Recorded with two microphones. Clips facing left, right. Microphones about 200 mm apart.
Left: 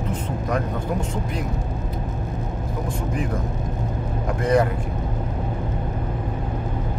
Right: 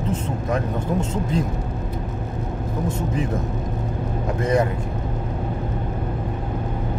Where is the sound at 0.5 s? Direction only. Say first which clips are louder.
Right 2 dB; 25° right (ahead or behind).